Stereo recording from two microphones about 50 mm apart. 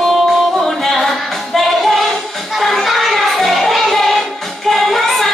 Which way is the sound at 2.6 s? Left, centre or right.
Centre.